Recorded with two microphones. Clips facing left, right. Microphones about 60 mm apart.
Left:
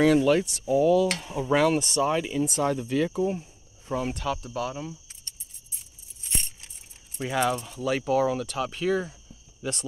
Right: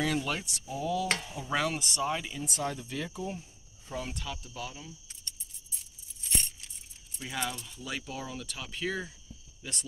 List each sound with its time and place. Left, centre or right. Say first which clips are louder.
0.0 s speech: left 11 dB; left
1.2 s speech: left 9 dB; left
4.2 s speech: left 10 dB; left
7.3 s speech: left 10 dB; left
9.6 s speech: left 10 dB; left